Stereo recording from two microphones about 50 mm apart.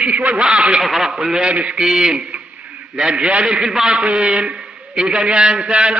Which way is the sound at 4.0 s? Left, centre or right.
Right.